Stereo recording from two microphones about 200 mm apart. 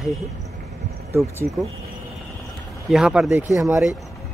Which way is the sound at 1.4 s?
45° right (ahead or behind).